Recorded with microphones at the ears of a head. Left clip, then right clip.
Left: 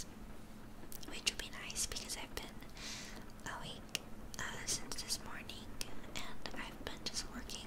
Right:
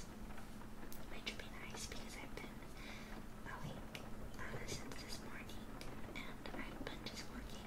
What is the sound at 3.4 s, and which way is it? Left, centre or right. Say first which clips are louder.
Whispering: left 5 dB; left.